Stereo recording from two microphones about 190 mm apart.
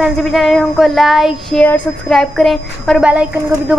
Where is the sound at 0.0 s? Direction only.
Centre (ahead or behind).